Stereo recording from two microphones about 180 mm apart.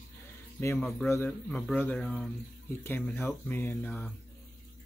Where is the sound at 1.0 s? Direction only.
15° left (ahead or behind).